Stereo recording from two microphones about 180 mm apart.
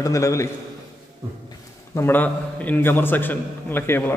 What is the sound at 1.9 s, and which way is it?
A man's voice, 10° left (ahead or behind).